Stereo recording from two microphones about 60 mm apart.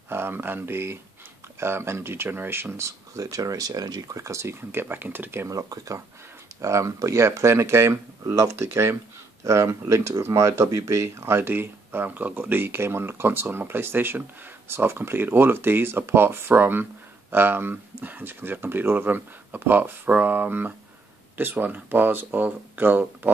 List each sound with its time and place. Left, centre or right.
0.1 s speech: right
2.8 s speech: right
4.6 s speech: right
5.5 s speech: right
6.6 s speech: right